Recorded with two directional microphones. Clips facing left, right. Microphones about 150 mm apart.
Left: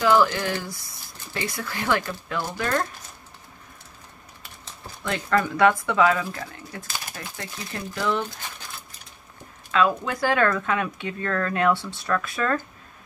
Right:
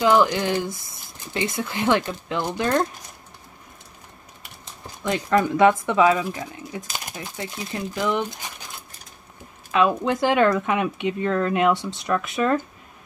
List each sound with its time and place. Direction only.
0.0 s speech: 20° right (ahead or behind)
5.0 s speech: 15° right (ahead or behind)
9.7 s speech: 20° right (ahead or behind)